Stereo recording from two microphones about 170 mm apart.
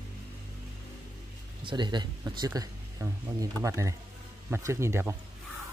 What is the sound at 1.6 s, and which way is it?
Speech, 30° right (ahead or behind).